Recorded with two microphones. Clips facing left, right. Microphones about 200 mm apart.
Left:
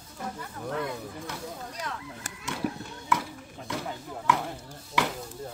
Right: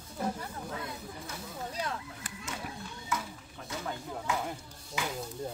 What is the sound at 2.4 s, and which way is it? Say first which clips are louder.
Children playing: left 10 dB; 65° left (ahead or behind).